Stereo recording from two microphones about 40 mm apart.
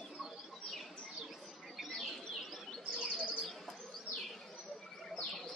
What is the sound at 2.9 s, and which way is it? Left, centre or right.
Chirp, right.